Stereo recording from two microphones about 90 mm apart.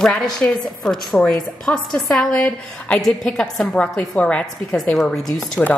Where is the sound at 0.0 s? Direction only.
10° left (ahead or behind).